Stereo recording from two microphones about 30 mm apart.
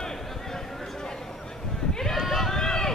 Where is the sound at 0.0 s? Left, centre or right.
Centre.